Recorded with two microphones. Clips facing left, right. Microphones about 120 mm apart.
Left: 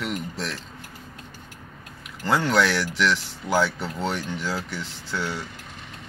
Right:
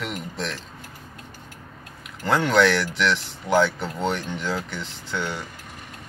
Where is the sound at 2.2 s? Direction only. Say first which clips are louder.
Right 2 dB; centre (ahead or behind).